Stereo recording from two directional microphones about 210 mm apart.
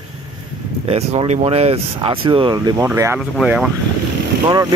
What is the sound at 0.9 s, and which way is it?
Speech, 30° right (ahead or behind).